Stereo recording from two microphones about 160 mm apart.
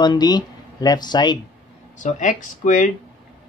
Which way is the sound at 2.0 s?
50° left (ahead or behind).